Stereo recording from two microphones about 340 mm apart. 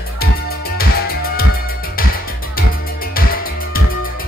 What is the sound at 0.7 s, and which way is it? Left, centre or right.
Music, left.